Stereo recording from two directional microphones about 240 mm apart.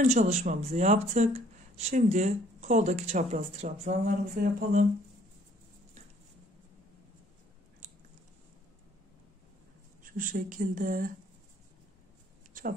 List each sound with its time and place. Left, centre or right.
0.0 s speech: right
10.0 s speech: right